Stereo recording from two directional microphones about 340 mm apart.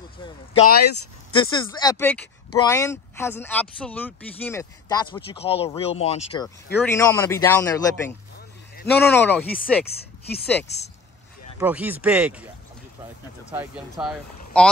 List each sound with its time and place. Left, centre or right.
1.3 s speech: centre
10.2 s speech: left
11.6 s speech: centre
13.5 s speech: centre